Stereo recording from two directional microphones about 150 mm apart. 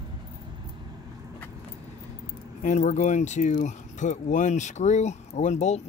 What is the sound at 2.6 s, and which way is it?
Speech, 55° left (ahead or behind).